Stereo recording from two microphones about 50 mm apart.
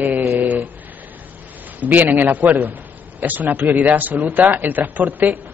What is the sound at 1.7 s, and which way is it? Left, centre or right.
Speech, right.